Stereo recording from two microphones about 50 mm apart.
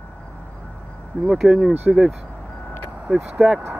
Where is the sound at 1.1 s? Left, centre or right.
Right.